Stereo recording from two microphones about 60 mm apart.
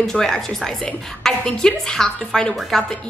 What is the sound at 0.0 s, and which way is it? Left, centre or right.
A woman's voice, centre.